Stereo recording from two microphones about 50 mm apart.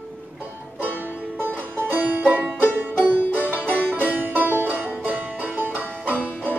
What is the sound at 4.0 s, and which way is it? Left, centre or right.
Music, right.